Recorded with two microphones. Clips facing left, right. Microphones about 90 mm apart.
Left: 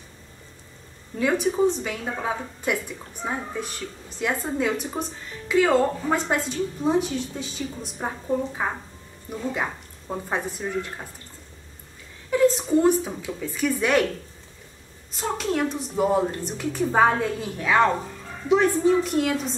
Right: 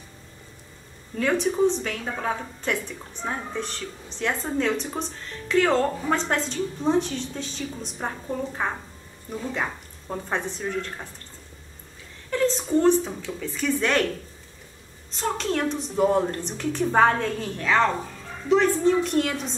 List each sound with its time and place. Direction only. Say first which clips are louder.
1.2 s a woman's voice: even; 5° left (ahead or behind)
12.3 s a woman's voice: left 4 dB; 10° left (ahead or behind)
15.0 s a woman's voice: even; 5° left (ahead or behind)
19.0 s a woman's voice: left 1 dB; 5° left (ahead or behind)